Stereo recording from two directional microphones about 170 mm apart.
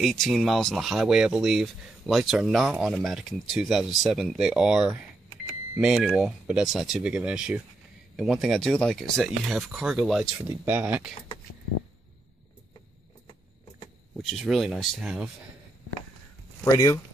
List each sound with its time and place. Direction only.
0.0 s speech: centre (ahead or behind)
14.3 s speech: centre (ahead or behind)
16.6 s speech: 20° left (ahead or behind)